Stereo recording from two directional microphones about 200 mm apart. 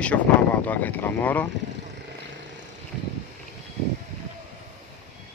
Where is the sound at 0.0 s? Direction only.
5° left (ahead or behind).